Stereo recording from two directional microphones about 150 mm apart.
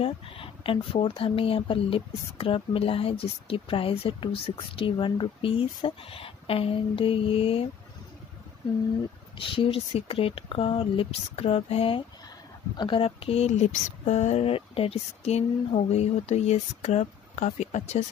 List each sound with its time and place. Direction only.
0.0 s speech: 40° left (ahead or behind)
9.4 s speech: 35° left (ahead or behind)